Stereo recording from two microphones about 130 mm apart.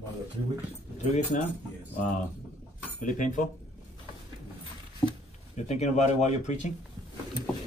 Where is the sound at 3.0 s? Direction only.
75° left (ahead or behind).